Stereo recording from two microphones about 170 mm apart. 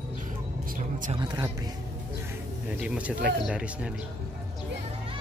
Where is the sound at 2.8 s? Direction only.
5° right (ahead or behind).